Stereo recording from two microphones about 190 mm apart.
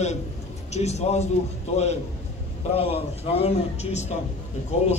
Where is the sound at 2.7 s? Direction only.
30° left (ahead or behind).